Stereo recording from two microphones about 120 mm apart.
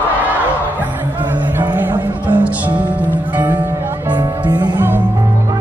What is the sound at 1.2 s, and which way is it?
Music, 15° right (ahead or behind).